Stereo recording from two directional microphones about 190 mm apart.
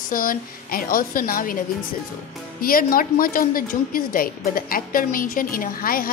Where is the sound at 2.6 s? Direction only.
50° left (ahead or behind).